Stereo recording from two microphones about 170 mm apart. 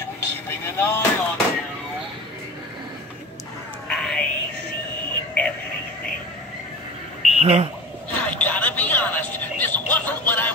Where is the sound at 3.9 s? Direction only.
5° left (ahead or behind).